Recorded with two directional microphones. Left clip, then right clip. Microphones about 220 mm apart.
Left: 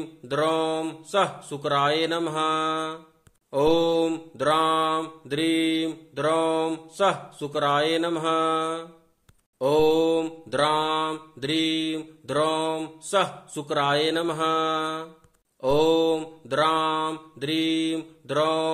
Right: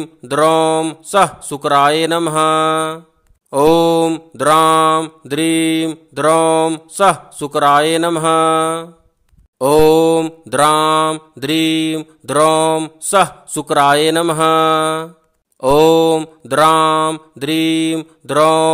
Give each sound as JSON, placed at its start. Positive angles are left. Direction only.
{"t": 0.0, "sound": "mantra", "side_deg": -45}